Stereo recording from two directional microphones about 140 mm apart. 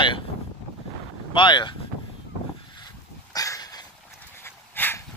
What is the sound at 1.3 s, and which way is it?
Speech, 35° left (ahead or behind).